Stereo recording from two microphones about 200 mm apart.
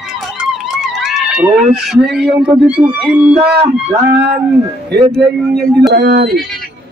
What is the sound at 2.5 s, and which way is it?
Speech, 5° right (ahead or behind).